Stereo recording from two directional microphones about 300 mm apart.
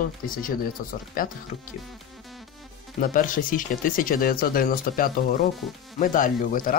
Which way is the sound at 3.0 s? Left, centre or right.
Left.